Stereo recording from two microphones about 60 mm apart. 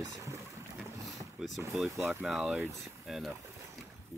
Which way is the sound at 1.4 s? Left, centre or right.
Centre.